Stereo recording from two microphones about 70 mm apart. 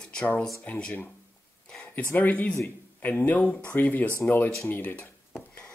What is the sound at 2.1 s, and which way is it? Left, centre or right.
Speech, left.